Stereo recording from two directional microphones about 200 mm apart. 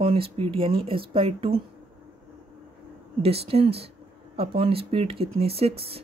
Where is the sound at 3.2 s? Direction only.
30° right (ahead or behind).